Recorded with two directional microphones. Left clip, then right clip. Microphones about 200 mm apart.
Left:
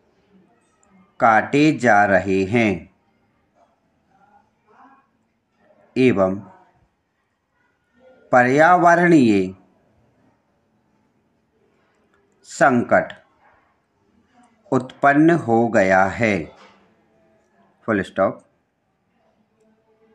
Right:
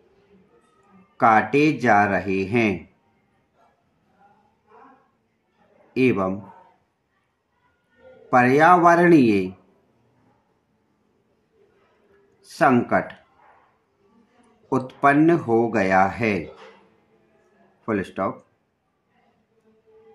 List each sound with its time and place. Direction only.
1.1 s speech: 25° left (ahead or behind)
5.9 s speech: 25° left (ahead or behind)
8.3 s speech: 25° left (ahead or behind)
12.4 s speech: 25° left (ahead or behind)
14.7 s speech: 25° left (ahead or behind)
17.8 s speech: 20° left (ahead or behind)